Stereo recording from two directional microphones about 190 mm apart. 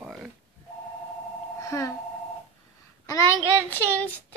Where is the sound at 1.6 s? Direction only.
15° left (ahead or behind).